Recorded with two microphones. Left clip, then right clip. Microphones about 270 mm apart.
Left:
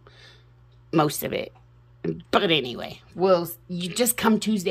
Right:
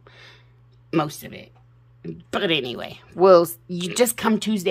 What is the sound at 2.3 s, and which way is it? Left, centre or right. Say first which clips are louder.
Speech: left 1 dB; centre.